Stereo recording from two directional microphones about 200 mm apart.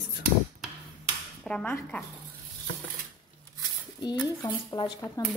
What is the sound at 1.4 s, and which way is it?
Speech, 5° left (ahead or behind).